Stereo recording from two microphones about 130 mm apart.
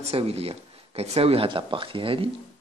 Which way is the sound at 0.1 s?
50° right (ahead or behind).